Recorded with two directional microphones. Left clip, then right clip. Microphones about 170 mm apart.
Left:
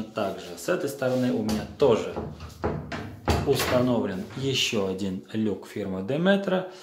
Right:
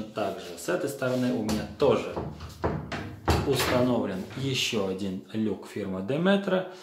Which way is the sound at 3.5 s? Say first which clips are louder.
Left 2 dB; 10° left (ahead or behind).